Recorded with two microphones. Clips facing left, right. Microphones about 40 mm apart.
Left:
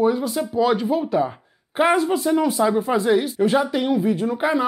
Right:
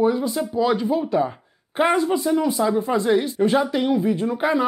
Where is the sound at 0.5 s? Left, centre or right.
Centre.